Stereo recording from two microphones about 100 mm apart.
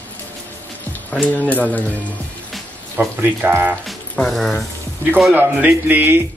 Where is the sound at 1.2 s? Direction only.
15° left (ahead or behind).